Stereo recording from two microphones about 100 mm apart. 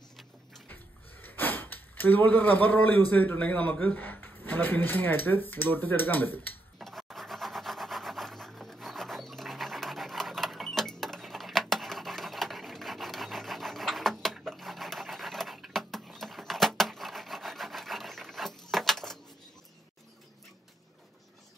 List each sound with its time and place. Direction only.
1.2 s speech: 20° left (ahead or behind)
6.8 s rub: centre (ahead or behind)
18.7 s keys jangling: centre (ahead or behind)